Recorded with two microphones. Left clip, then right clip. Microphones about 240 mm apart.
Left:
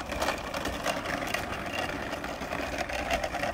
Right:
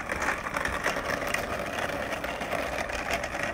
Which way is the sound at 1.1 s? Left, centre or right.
Right.